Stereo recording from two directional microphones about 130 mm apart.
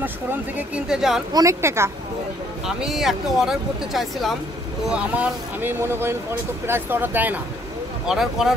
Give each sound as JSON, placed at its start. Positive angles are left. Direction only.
{"t": 0.0, "sound": "speech", "side_deg": -15}
{"t": 1.3, "sound": "speech", "side_deg": -25}
{"t": 2.6, "sound": "speech", "side_deg": -5}
{"t": 8.1, "sound": "speech", "side_deg": 0}